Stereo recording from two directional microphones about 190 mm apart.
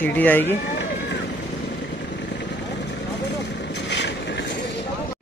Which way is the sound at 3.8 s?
65° left (ahead or behind).